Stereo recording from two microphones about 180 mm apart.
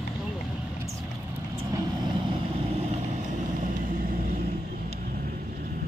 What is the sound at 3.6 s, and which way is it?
Vehicle, 50° right (ahead or behind).